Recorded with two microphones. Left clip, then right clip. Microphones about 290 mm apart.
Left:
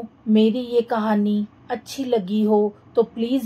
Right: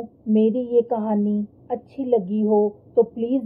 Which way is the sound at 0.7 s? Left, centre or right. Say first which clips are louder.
Even; left.